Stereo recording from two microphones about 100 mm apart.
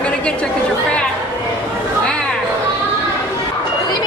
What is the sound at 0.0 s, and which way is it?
Chatter, 10° left (ahead or behind).